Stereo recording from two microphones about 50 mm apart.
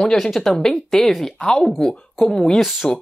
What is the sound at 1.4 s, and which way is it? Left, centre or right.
Speech, centre.